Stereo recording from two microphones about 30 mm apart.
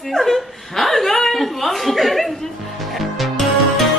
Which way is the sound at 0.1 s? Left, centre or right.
Centre.